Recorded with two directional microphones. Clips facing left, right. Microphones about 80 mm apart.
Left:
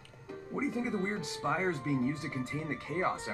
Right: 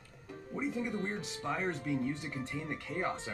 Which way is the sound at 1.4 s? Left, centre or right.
Left.